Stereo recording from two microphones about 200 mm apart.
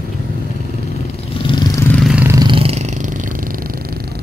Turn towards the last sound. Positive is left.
turn(degrees=-35)  # may be behind; listen again after turning